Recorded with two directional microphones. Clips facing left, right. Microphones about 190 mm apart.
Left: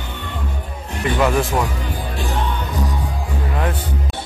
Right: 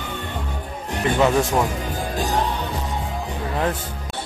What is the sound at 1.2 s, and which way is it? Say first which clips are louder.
Speech: even; 20° right (ahead or behind).